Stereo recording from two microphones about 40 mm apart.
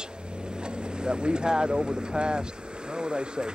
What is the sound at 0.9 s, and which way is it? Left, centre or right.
Speech, right.